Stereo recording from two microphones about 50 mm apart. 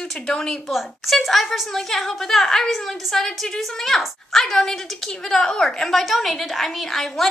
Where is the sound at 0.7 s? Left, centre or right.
Centre.